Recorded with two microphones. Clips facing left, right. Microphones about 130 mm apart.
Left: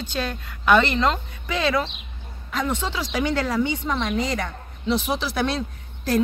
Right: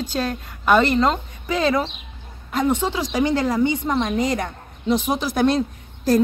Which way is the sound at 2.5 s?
45° right (ahead or behind).